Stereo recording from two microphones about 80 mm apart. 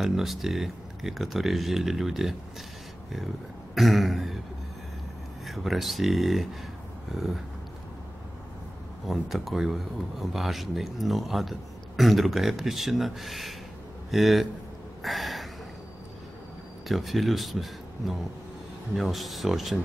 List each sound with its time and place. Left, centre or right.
0.0 s speech: centre
3.7 s throat clearing: centre
5.5 s speech: centre
9.0 s speech: centre
15.0 s a sound: centre
16.8 s speech: centre